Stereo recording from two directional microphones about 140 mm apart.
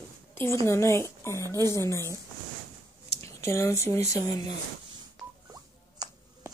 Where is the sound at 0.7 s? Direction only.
20° left (ahead or behind).